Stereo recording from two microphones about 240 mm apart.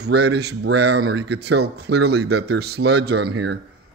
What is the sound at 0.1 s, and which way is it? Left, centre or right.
Speech, right.